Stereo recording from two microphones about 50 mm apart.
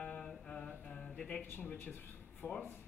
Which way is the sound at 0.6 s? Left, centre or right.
Left.